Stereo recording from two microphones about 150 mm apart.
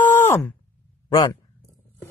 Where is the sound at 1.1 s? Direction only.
25° left (ahead or behind).